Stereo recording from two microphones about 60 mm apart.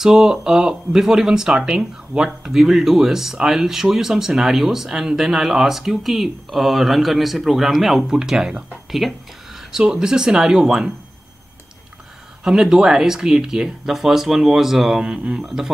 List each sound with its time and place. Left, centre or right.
0.0 s speech: centre
12.4 s speech: centre
15.0 s speech: centre
15.4 s speech: centre